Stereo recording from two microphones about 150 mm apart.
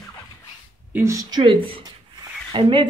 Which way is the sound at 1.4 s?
35° right (ahead or behind).